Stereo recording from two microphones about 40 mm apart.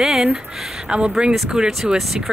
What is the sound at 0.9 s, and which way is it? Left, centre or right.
Speech, right.